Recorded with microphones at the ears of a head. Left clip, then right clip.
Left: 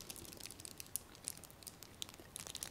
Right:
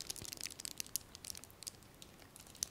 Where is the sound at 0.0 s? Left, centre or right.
Right.